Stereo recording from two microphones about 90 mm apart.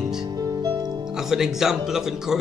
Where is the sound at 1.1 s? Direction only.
5° right (ahead or behind).